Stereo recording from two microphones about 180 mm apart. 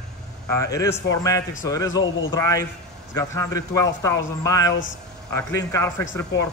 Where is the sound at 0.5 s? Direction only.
15° left (ahead or behind).